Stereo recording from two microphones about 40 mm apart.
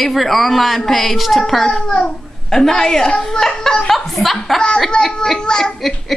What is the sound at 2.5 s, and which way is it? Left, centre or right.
Child singing, centre.